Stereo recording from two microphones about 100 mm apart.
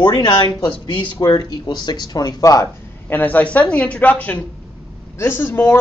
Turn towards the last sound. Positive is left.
turn(degrees=20)  # may be behind; listen again after turning